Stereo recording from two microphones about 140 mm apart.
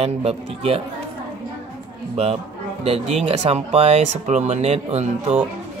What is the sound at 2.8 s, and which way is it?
Speech, 45° right (ahead or behind).